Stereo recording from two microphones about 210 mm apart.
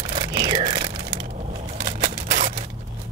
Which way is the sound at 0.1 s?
20° right (ahead or behind).